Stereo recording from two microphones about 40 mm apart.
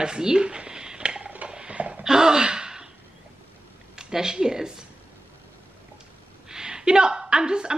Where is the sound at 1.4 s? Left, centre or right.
Right.